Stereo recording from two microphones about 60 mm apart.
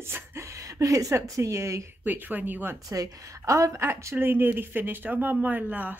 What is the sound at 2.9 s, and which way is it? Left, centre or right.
Speech, right.